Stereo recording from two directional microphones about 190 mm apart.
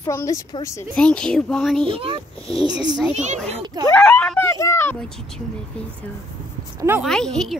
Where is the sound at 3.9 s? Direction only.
5° left (ahead or behind).